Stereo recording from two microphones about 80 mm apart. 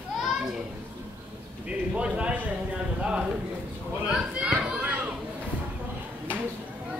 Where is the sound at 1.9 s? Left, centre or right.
Centre.